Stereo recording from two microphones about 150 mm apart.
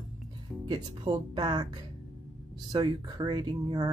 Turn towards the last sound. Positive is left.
turn(degrees=-30)  # may be behind; listen again after turning